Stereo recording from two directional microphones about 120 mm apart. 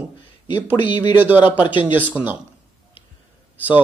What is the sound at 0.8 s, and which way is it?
Speech, 40° left (ahead or behind).